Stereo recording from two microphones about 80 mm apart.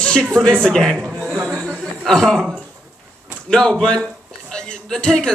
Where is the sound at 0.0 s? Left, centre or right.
Centre.